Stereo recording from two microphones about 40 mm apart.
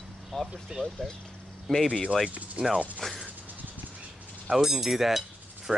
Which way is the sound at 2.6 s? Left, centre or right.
Right.